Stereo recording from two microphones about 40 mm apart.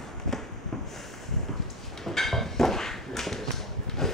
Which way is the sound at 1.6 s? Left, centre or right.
Centre.